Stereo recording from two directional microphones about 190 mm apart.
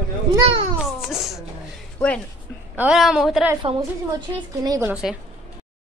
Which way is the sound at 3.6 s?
30° right (ahead or behind).